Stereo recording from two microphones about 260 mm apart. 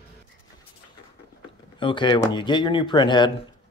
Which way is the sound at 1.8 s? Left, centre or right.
Centre.